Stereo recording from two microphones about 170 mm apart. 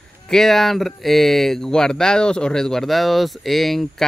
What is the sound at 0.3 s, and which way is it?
Speech, centre (ahead or behind).